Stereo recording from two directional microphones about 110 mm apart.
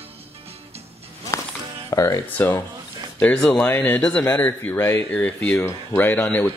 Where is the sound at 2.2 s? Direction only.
15° left (ahead or behind).